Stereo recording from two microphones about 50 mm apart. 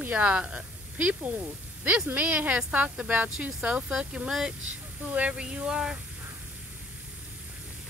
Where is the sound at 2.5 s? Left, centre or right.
Right.